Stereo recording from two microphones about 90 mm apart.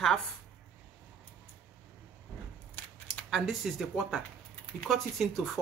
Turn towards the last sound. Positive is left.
turn(degrees=5)  # may be behind; listen again after turning